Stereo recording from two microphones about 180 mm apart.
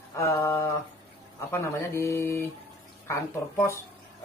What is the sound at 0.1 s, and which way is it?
Speech, 15° left (ahead or behind).